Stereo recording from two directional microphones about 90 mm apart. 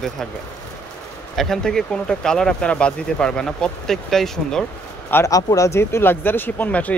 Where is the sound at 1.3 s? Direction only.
5° left (ahead or behind).